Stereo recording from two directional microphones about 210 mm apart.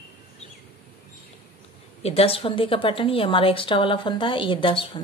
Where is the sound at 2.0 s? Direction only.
25° left (ahead or behind).